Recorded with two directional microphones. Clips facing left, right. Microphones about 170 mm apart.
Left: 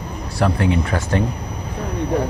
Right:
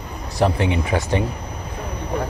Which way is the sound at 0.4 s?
20° right (ahead or behind).